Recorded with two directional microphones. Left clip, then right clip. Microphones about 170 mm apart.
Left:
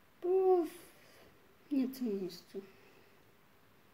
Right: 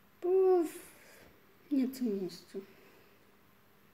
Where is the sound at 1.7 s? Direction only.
15° right (ahead or behind).